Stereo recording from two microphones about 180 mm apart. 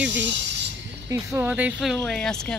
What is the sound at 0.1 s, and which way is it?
Speech, 75° right (ahead or behind).